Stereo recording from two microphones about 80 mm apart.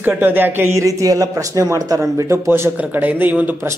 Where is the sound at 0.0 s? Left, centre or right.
Right.